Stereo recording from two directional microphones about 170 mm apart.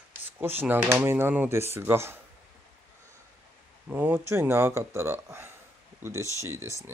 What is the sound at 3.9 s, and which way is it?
Speech, 10° right (ahead or behind).